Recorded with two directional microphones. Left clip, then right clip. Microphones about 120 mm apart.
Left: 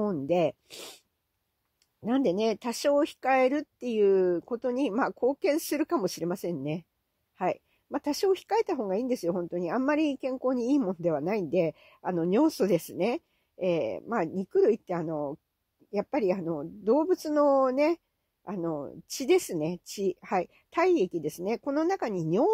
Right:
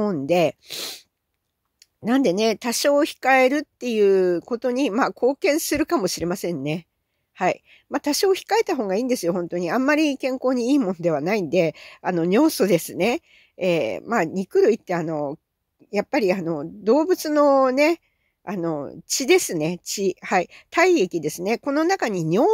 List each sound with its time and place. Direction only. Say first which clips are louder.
0.0 s a woman's voice: right 7 dB; 30° right (ahead or behind)